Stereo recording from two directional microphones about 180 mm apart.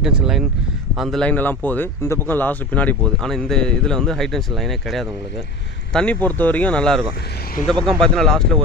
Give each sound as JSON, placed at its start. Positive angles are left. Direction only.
{"t": 0.0, "sound": "a man's voice", "side_deg": -5}